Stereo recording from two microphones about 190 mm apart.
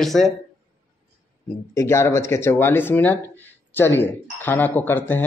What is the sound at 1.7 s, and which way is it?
Speech, 15° left (ahead or behind).